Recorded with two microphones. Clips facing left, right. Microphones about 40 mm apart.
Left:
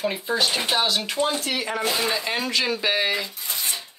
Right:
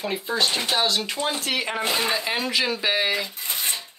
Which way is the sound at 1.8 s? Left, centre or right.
Right.